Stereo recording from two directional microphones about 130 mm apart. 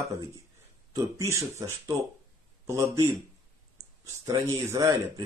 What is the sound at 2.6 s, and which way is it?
Speech, 20° right (ahead or behind).